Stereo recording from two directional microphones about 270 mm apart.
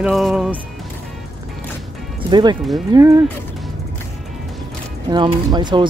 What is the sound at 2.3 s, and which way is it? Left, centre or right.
Speech, centre.